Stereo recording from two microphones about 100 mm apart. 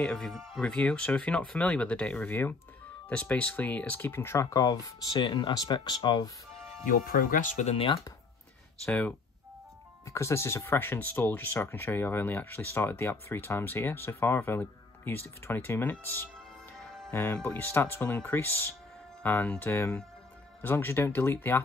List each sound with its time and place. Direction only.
0.0 s speech: 5° left (ahead or behind); by 6.2 s 50° left (ahead or behind)
7.6 s speech: 65° left (ahead or behind)
8.8 s speech: 10° left (ahead or behind)
10.0 s speech: 30° left (ahead or behind)
16.8 s music: 5° left (ahead or behind)
17.1 s speech: 30° left (ahead or behind)